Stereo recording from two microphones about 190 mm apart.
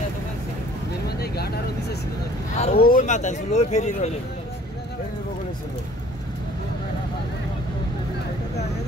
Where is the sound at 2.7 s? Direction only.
45° left (ahead or behind).